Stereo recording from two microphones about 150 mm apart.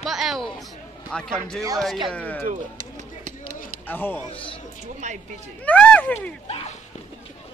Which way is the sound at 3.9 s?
15° left (ahead or behind).